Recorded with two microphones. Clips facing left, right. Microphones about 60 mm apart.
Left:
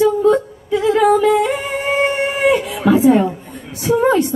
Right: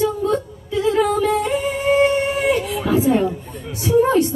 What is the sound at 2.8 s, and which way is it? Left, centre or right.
Speech, left.